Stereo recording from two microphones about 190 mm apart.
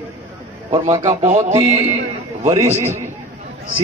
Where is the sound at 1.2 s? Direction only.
40° right (ahead or behind).